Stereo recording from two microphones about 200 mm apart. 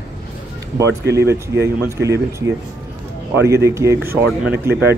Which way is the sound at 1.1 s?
15° right (ahead or behind).